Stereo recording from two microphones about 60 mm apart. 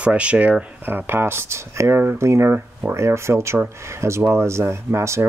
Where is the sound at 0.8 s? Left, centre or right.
Right.